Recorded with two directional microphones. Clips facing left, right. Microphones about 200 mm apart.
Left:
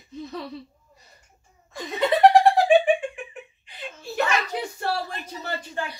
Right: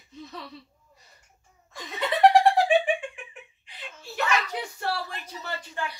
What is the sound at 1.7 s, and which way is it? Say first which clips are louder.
Laughter: left 6 dB; 40° left (ahead or behind).